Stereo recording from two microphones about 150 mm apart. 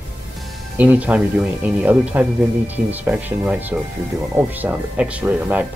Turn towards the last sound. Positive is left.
turn(degrees=-10)  # may be behind; listen again after turning